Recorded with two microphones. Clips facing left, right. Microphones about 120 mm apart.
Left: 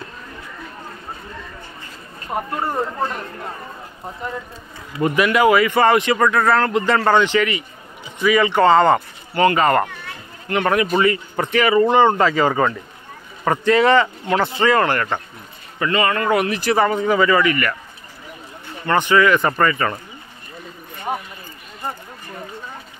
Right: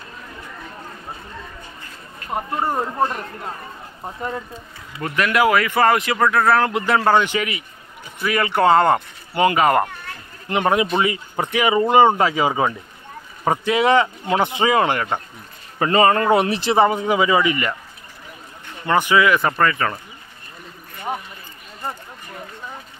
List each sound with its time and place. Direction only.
2.6 s speech: 15° right (ahead or behind)
5.0 s speech: 10° left (ahead or behind)
5.3 s speech: centre (ahead or behind)
10.5 s speech: 20° right (ahead or behind)
15.8 s a man's voice: 35° right (ahead or behind)
16.9 s speech: 15° right (ahead or behind)
18.9 s speech: 10° right (ahead or behind)